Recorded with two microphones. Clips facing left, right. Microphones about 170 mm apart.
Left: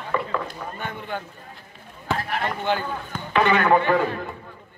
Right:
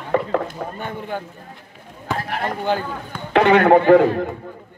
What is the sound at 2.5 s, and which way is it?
Speech, 40° right (ahead or behind).